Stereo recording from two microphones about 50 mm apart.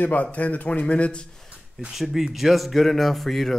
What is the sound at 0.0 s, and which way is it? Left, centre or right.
Speech, left.